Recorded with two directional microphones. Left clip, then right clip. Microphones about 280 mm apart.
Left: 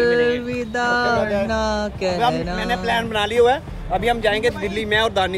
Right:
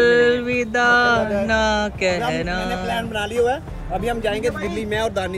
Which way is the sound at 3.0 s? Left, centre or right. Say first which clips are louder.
Left 4 dB; left.